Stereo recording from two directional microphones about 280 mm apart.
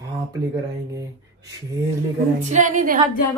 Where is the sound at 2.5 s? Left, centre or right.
Right.